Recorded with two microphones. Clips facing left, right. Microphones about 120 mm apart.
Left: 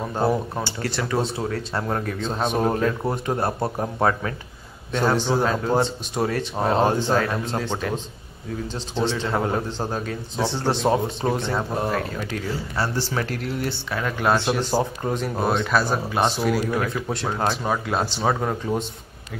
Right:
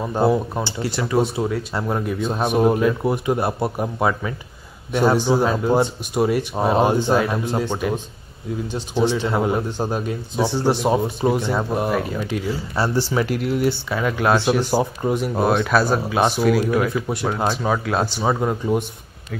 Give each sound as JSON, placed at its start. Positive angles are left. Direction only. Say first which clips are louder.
{"t": 0.1, "sound": "a man's voice", "louder": "right 4 dB", "side_deg": -10}
{"t": 9.1, "sound": "a man's voice", "louder": "right 3 dB", "side_deg": -10}